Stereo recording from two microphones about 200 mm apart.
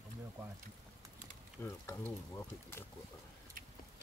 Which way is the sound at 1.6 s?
10° left (ahead or behind).